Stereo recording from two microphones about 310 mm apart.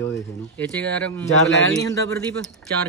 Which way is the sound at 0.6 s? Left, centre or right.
Centre.